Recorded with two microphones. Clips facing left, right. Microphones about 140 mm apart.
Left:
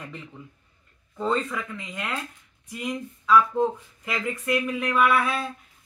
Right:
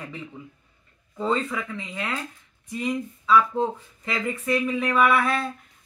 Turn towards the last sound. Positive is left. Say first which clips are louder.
# right 1 dB
turn(degrees=5)  # may be behind; listen again after turning